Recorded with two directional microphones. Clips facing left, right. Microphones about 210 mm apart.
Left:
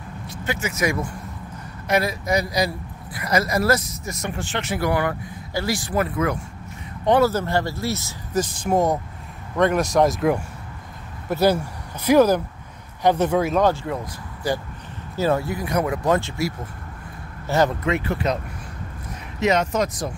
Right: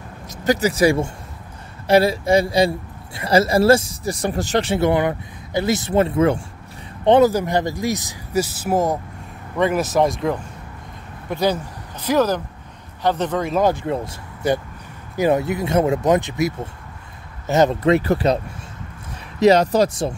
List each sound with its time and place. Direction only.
0.3 s speech: 35° right (ahead or behind); by 13.6 s 5° left (ahead or behind)
13.6 s speech: 15° right (ahead or behind)
13.8 s speech: 25° right (ahead or behind)
17.8 s speech: 35° right (ahead or behind)
19.4 s speech: 35° right (ahead or behind)